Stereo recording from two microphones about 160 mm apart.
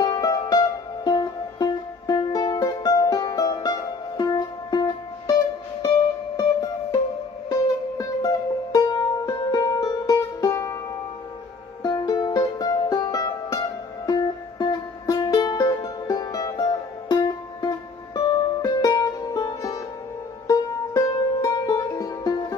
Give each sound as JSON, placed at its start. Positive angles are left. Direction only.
{"t": 0.0, "sound": "music", "side_deg": 25}
{"t": 8.7, "sound": "music", "side_deg": 20}
{"t": 11.8, "sound": "music", "side_deg": 25}